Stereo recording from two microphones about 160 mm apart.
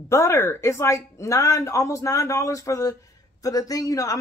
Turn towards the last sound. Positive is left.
turn(degrees=20)  # may be behind; listen again after turning